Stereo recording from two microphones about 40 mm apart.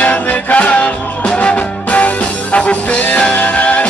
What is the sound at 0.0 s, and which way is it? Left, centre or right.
Music, left.